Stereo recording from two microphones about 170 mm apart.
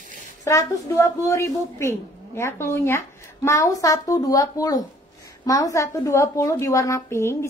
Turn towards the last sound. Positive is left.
turn(degrees=15)  # may be behind; listen again after turning